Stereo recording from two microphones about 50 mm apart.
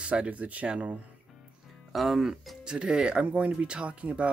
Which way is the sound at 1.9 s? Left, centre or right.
Centre.